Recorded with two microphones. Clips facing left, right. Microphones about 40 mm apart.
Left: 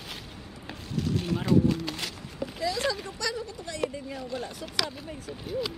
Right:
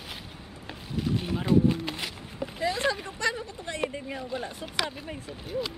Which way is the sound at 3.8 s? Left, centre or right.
Right.